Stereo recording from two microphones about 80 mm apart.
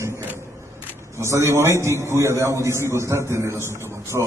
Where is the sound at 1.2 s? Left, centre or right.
Right.